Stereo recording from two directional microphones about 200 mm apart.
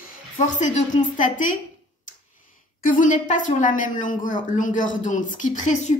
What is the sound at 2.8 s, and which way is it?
A woman's voice, 40° left (ahead or behind).